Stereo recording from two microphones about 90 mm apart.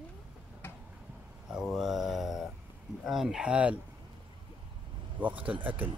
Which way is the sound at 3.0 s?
5° right (ahead or behind).